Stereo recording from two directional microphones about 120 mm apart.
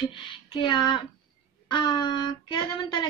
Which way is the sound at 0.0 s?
45° left (ahead or behind).